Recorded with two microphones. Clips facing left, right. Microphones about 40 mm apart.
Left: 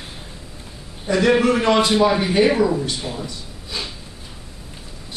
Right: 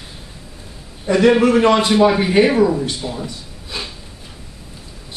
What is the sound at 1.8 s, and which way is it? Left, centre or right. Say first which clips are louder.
Speech: right 3 dB; right.